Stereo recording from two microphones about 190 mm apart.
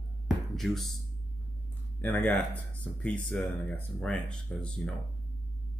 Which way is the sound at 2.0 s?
10° left (ahead or behind).